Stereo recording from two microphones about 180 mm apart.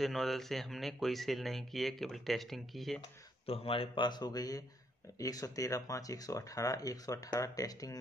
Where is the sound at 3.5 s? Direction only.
30° left (ahead or behind).